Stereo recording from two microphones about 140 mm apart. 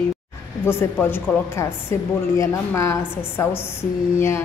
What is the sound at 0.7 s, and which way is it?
A woman's voice, 15° left (ahead or behind).